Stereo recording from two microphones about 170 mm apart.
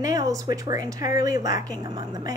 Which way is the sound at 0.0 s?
20° right (ahead or behind).